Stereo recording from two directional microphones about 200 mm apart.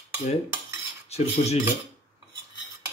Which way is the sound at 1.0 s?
30° left (ahead or behind).